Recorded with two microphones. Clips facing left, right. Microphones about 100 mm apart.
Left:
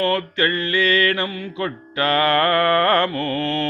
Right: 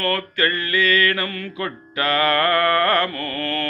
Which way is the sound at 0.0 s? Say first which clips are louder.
Left 2 dB; 20° left (ahead or behind).